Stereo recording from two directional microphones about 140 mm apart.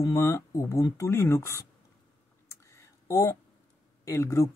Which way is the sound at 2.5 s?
20° left (ahead or behind).